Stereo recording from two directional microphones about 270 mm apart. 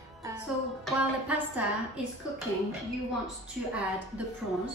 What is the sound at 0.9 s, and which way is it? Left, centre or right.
Speech, centre.